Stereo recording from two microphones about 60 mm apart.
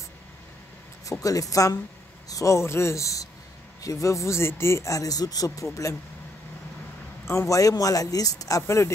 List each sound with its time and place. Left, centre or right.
1.2 s speech: left
7.2 s speech: left